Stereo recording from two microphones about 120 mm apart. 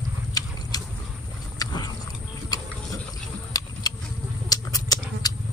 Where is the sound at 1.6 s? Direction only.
35° left (ahead or behind).